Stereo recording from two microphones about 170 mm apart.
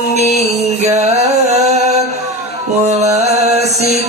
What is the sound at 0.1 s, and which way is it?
Music, 40° right (ahead or behind).